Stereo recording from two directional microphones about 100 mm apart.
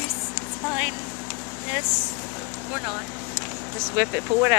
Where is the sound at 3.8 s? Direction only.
20° right (ahead or behind).